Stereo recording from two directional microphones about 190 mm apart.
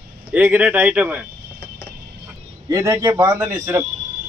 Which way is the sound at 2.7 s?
15° right (ahead or behind).